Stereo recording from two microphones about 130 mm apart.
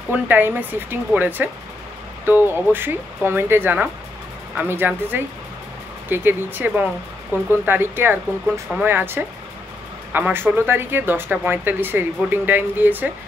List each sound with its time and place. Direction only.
0.1 s speech: 15° right (ahead or behind)